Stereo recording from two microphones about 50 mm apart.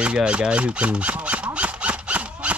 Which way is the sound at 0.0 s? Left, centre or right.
Right.